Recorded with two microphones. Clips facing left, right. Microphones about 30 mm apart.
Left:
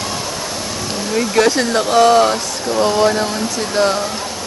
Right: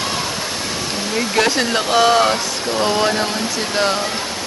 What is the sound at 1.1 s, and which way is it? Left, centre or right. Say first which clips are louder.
Speech: left 3 dB; centre.